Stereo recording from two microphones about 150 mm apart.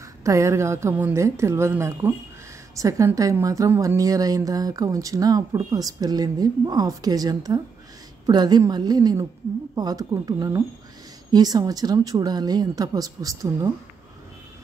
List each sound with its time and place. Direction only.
0.2 s a woman's voice: 20° right (ahead or behind)